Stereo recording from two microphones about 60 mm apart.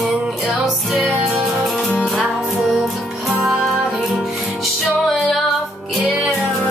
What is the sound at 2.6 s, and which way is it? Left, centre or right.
Music, centre.